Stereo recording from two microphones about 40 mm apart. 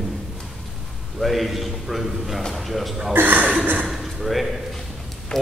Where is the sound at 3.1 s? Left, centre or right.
Right.